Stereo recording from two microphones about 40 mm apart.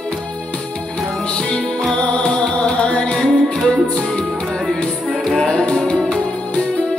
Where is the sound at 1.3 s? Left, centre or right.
Left.